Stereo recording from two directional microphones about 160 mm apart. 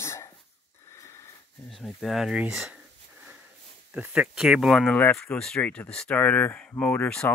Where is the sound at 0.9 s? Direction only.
15° left (ahead or behind).